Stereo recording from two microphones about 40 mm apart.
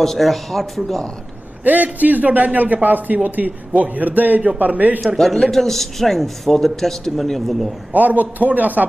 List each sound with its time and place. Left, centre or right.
0.0 s a man's voice: centre
1.6 s a man's voice: right
5.0 s a man's voice: centre
7.9 s a man's voice: right